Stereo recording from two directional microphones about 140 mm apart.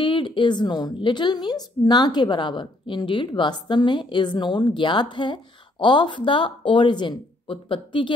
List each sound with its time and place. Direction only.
0.0 s a woman's voice: 35° left (ahead or behind)